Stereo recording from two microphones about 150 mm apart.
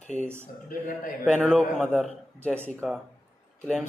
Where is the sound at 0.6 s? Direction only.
70° left (ahead or behind).